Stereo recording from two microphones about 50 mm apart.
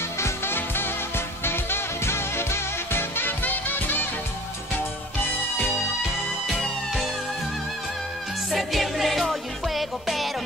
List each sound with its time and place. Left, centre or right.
0.5 s music: left
8.5 s music: centre